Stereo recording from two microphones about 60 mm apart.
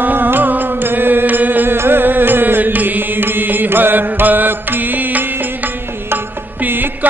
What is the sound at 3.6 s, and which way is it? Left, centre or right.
Mantra, right.